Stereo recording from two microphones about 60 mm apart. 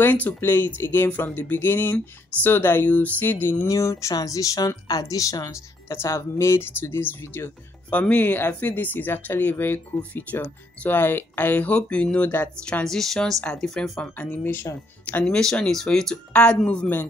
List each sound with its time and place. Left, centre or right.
0.0 s speech: left
3.6 s speech: left
6.1 s speech: left
7.9 s speech: left
12.8 s speech: centre
14.4 s speech: left
15.6 s speech: centre